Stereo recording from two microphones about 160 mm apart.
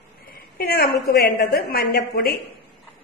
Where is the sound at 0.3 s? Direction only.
65° left (ahead or behind).